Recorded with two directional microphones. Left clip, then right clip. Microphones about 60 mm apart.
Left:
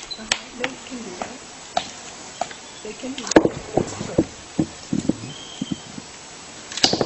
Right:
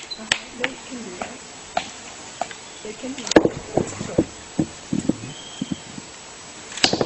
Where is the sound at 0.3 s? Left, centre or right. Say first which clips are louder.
Right 1 dB; centre.